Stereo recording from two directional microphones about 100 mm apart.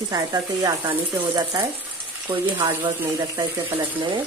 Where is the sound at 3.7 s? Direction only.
60° right (ahead or behind).